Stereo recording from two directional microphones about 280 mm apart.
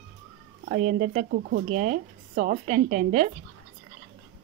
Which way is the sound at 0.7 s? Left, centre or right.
Right.